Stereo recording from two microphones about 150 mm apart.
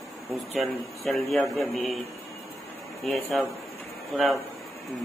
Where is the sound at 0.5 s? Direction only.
Centre (ahead or behind).